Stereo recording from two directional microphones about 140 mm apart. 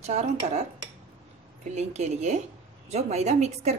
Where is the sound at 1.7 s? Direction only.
50° right (ahead or behind).